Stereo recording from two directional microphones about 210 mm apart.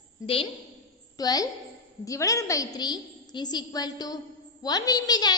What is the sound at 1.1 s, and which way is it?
A woman's voice, 15° left (ahead or behind).